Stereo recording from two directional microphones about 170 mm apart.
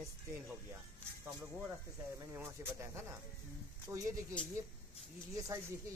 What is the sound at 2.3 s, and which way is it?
Speech, 15° right (ahead or behind).